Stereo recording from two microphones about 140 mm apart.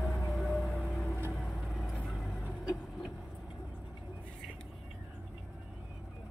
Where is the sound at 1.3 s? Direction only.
Centre (ahead or behind).